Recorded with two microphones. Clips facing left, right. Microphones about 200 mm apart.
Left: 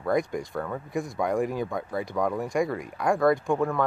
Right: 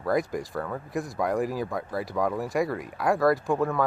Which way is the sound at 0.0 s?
Centre (ahead or behind).